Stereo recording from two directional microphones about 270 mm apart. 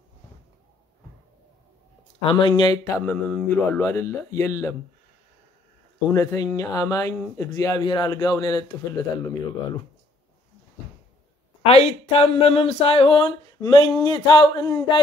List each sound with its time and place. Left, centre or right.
2.2 s speech: centre
6.0 s speech: centre
11.6 s speech: left